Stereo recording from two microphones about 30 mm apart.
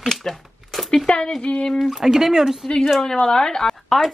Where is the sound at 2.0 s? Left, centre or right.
Centre.